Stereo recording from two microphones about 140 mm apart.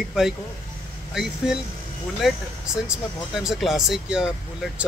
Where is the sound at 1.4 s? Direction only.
5° right (ahead or behind).